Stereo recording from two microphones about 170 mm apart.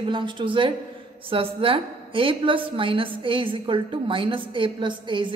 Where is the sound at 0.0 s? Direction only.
30° right (ahead or behind).